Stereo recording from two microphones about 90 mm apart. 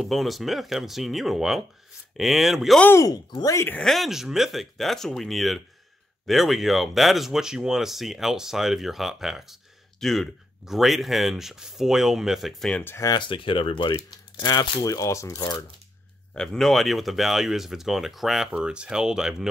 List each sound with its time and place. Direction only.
0.0 s speech: centre (ahead or behind)
3.8 s speech: centre (ahead or behind)
13.2 s speech: 65° left (ahead or behind)
14.3 s speech: 50° left (ahead or behind)
16.3 s speech: 5° left (ahead or behind)